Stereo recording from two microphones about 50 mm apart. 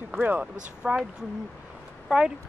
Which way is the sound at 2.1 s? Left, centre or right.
Centre.